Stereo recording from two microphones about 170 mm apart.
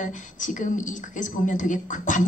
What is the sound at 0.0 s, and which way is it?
A woman's voice, 50° left (ahead or behind).